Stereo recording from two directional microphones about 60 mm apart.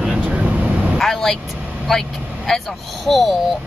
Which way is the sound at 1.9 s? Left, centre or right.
Centre.